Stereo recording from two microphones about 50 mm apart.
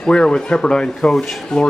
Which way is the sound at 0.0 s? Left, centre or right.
Centre.